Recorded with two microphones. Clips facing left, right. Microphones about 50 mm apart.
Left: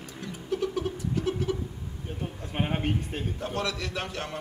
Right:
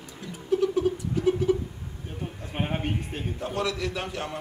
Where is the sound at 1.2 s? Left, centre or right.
Centre.